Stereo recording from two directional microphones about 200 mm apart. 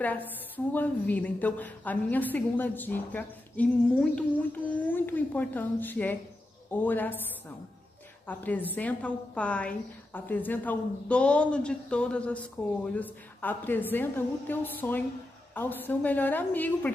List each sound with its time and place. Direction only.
0.0 s a woman's voice: 10° left (ahead or behind)
8.3 s a woman's voice: 10° left (ahead or behind)